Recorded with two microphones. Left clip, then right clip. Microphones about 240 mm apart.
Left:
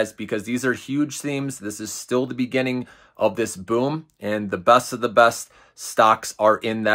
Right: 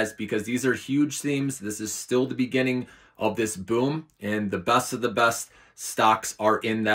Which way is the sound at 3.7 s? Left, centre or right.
Centre.